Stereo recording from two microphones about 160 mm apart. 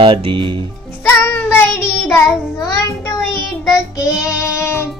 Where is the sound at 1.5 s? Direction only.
15° left (ahead or behind).